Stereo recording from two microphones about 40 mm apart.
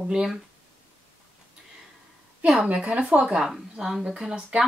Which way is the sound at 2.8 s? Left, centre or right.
Right.